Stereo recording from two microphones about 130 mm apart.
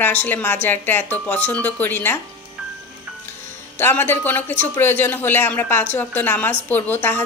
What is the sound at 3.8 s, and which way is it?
A woman's voice, 15° left (ahead or behind).